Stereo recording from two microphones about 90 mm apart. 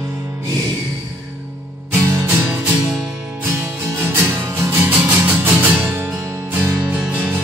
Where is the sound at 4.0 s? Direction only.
25° right (ahead or behind).